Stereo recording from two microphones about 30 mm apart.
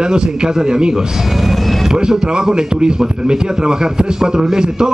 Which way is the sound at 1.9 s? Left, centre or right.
Right.